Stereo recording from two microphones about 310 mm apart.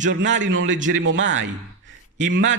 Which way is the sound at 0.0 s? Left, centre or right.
Right.